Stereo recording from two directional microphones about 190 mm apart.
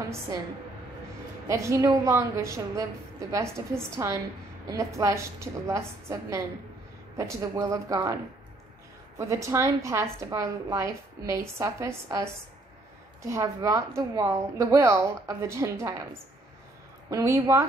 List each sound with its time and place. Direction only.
1.5 s a woman's voice: 15° right (ahead or behind)
9.2 s a woman's voice: 15° right (ahead or behind)